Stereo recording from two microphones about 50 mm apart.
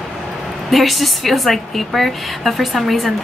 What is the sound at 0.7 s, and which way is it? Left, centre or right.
Speech, centre.